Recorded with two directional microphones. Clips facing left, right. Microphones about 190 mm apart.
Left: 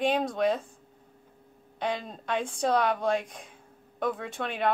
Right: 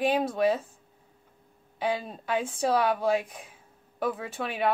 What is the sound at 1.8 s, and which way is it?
A woman's voice, 5° right (ahead or behind).